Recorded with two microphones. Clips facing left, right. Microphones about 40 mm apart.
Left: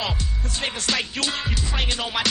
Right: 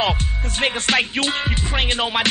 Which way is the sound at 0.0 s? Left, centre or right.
Right.